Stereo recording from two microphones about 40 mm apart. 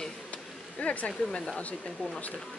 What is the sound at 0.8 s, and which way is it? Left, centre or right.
Speech, left.